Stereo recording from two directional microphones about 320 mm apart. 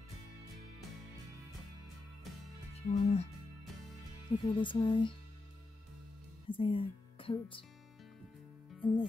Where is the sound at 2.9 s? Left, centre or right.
Left.